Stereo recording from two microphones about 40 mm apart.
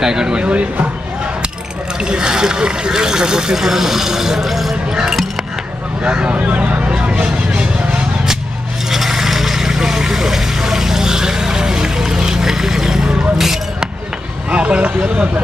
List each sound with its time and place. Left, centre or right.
0.0 s speech: centre
0.4 s speech: right
2.0 s speech: centre
6.0 s speech: right
7.0 s vehicle: right
8.9 s a sound: centre
14.5 s speech: right